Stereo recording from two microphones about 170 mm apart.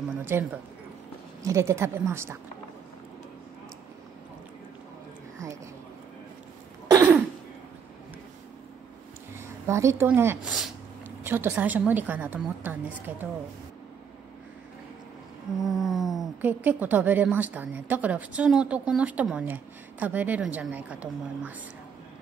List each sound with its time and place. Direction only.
0.2 s speech: 10° right (ahead or behind)
9.3 s a woman's voice: 15° right (ahead or behind)
10.4 s speech: centre (ahead or behind)
11.2 s speech: 10° right (ahead or behind)
15.6 s speech: centre (ahead or behind)